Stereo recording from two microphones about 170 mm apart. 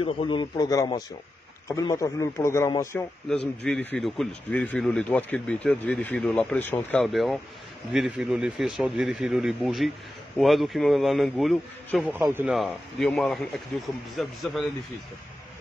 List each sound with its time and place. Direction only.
0.0 s a man's voice: 30° left (ahead or behind)
3.3 s speech: 5° left (ahead or behind)
7.0 s speech: centre (ahead or behind)